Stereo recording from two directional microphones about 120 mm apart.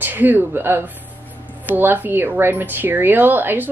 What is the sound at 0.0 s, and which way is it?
A woman's voice, 15° right (ahead or behind).